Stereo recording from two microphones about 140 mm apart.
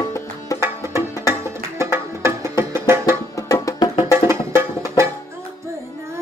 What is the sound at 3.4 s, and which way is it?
Music, 25° left (ahead or behind).